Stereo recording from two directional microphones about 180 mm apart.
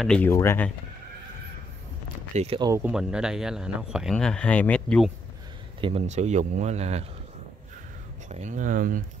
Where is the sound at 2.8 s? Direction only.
5° right (ahead or behind).